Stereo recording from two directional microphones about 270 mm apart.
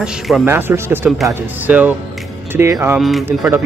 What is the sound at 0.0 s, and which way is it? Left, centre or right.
Speech, centre.